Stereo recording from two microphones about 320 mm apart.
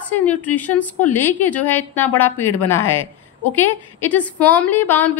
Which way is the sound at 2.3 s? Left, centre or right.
Left.